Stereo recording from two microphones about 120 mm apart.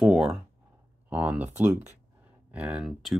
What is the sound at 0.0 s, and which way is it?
Speech, 5° right (ahead or behind).